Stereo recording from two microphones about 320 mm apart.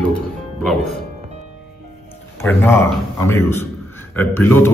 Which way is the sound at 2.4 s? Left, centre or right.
Centre.